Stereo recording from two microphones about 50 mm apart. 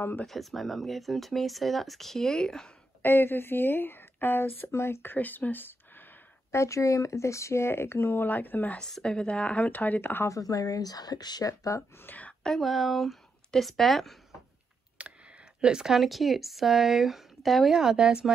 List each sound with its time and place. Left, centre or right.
0.3 s speech: centre
3.0 s a woman's voice: left
5.1 s speech: left
6.5 s speech: left
8.3 s speech: left
9.0 s speech: centre; by 10.0 s left
10.2 s a woman's voice: left
11.4 s speech: left
12.1 s a sound: left
12.4 s speech: centre
15.0 s computer keyboard: right
15.6 s speech: centre
15.9 s speech: centre
17.7 s speech: centre